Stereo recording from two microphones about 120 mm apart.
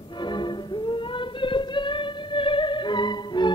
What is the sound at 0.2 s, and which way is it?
Music, 40° left (ahead or behind).